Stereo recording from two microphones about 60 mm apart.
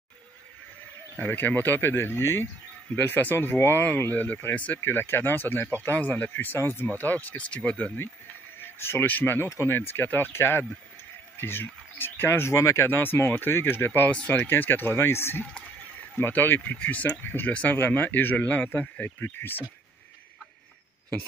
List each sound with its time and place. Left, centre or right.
1.1 s speech: left
4.7 s speech: left; by 7.9 s centre
8.5 s a sound: left
9.0 s speech: left
12.9 s speech: left